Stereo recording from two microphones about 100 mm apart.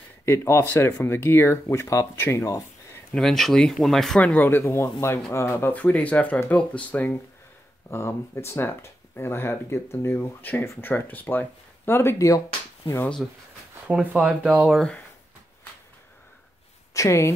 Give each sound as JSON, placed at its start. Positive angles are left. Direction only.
{"t": 0.2, "sound": "speech", "side_deg": 25}
{"t": 3.2, "sound": "speech", "side_deg": 5}
{"t": 4.2, "sound": "speech", "side_deg": 15}
{"t": 13.8, "sound": "speech", "side_deg": -10}
{"t": 14.7, "sound": "speech", "side_deg": 5}
{"t": 16.9, "sound": "speech", "side_deg": 30}